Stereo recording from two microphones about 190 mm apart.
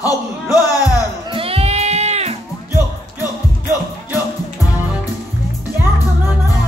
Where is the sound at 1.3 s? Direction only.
30° right (ahead or behind).